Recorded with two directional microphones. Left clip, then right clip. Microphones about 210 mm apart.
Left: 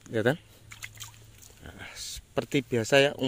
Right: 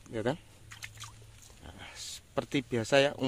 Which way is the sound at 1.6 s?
15° left (ahead or behind).